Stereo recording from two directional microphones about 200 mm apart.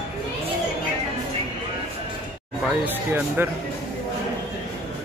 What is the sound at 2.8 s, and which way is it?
Speech, 10° right (ahead or behind).